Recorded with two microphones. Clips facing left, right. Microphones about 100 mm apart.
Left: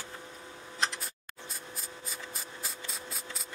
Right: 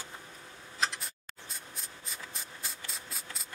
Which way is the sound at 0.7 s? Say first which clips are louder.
Even; centre (ahead or behind).